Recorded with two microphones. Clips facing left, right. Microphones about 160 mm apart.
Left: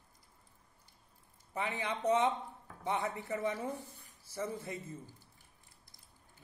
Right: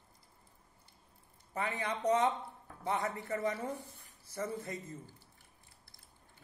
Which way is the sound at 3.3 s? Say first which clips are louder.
Even; 10° left (ahead or behind).